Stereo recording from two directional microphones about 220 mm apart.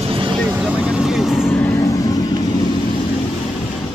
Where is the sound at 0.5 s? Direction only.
5° right (ahead or behind); by 2.2 s 15° left (ahead or behind).